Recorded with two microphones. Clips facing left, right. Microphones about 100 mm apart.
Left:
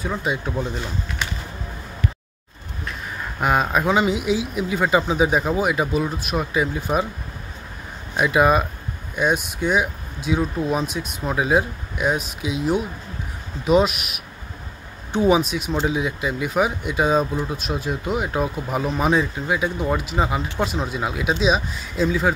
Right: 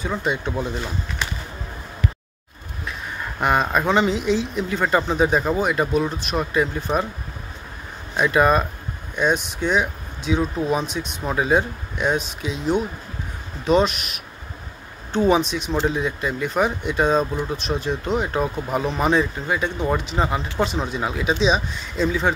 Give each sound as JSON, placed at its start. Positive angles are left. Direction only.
{"t": 0.0, "sound": "speech", "side_deg": 0}
{"t": 3.3, "sound": "speech", "side_deg": 0}
{"t": 8.2, "sound": "speech", "side_deg": 5}